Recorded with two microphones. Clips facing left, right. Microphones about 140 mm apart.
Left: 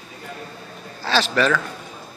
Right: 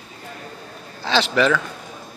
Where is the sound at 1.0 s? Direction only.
15° right (ahead or behind).